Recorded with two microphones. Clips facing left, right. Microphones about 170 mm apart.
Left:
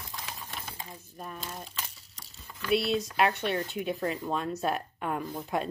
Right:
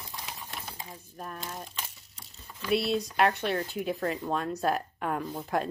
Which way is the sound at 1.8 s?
15° right (ahead or behind).